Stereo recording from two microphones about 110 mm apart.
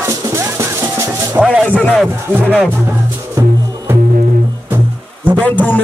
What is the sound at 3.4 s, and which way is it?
Music, 25° right (ahead or behind).